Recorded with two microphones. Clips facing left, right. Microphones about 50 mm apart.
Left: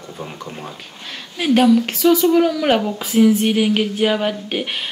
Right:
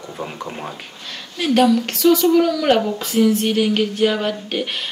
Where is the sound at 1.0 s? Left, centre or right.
Centre.